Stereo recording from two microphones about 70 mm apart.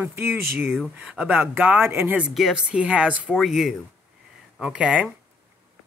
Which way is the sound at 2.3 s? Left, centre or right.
Centre.